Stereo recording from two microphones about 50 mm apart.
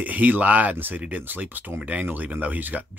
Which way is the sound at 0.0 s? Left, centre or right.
Right.